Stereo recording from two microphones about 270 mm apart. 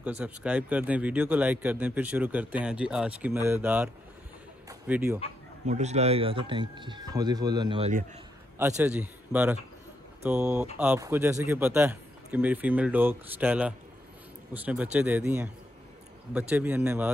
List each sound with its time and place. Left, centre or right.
0.2 s a man's voice: centre
5.7 s speech: right
8.5 s a man's voice: centre